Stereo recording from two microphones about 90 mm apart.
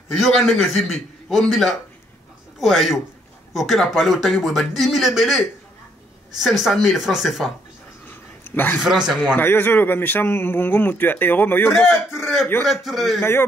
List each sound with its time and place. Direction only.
0.1 s speech: centre (ahead or behind)
8.1 s a sound: 20° left (ahead or behind)
9.0 s a man's voice: 10° right (ahead or behind)
9.4 s speech: 20° left (ahead or behind)
12.1 s a man's voice: 5° right (ahead or behind)
13.2 s speech: 25° left (ahead or behind)